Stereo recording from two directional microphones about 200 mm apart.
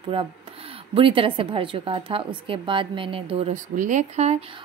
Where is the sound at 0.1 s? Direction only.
25° right (ahead or behind).